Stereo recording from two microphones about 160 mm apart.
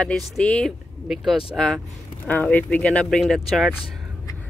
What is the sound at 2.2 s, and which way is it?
Speech, 10° left (ahead or behind).